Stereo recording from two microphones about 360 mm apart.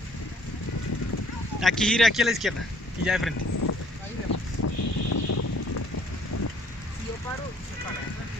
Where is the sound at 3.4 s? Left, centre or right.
Left.